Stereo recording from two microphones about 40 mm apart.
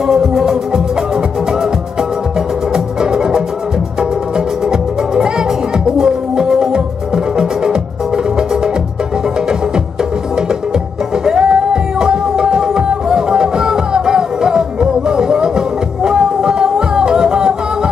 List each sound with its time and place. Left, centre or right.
0.0 s music: centre
2.7 s music: centre
5.9 s music: centre
11.2 s music: centre